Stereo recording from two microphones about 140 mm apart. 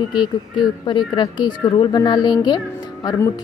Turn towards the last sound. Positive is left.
turn(degrees=20)  # may be behind; listen again after turning